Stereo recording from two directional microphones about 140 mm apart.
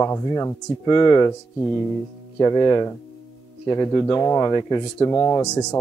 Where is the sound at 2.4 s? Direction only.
25° left (ahead or behind).